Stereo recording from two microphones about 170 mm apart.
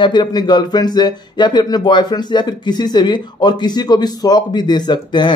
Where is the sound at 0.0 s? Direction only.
25° left (ahead or behind).